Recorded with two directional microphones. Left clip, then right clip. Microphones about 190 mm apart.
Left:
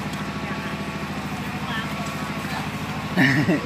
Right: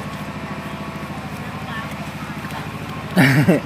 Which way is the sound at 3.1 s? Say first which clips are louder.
Right 4 dB; 45° right (ahead or behind).